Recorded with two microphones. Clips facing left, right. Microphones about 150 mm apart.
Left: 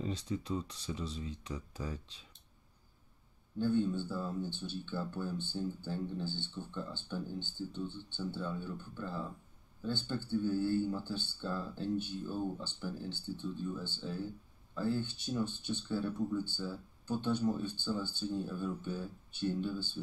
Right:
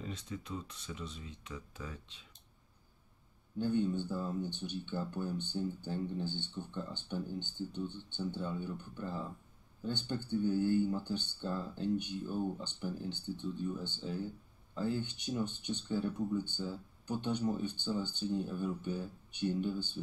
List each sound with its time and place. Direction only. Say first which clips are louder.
0.0 s speech: left 5 dB; 30° left (ahead or behind)
3.5 s speech: left 1 dB; 15° right (ahead or behind)